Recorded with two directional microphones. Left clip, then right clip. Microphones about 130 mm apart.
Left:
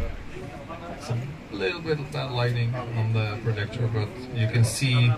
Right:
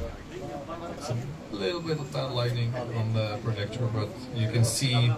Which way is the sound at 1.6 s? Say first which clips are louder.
Left 3 dB; 20° right (ahead or behind).